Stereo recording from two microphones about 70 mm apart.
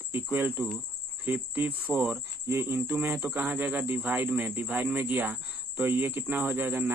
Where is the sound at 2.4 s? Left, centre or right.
Right.